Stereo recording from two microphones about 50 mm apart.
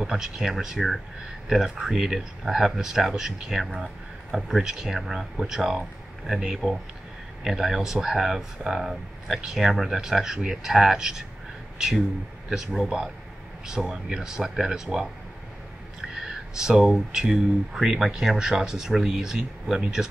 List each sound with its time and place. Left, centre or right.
0.0 s speech: centre
12.4 s speech: centre
16.3 s speech: centre